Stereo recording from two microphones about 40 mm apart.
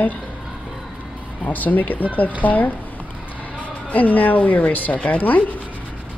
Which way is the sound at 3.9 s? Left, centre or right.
Left.